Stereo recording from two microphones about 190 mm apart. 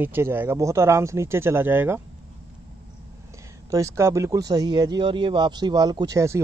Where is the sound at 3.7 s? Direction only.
15° right (ahead or behind).